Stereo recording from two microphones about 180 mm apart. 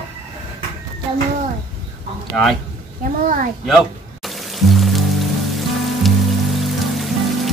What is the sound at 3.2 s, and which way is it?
Speech, 50° right (ahead or behind).